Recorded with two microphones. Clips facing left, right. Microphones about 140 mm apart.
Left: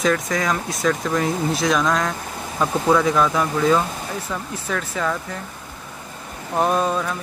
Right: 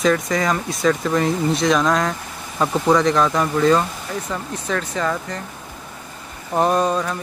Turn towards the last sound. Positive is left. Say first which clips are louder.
# right 2 dB
turn(degrees=0)  # may be behind; listen again after turning